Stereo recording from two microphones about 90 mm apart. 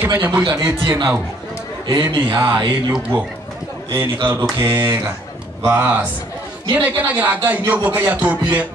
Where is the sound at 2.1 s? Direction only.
65° right (ahead or behind).